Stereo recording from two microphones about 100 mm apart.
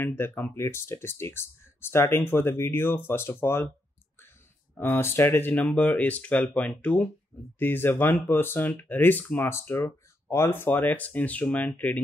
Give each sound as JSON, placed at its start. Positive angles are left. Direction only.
{"t": 0.0, "sound": "speech", "side_deg": 20}
{"t": 4.7, "sound": "speech", "side_deg": 20}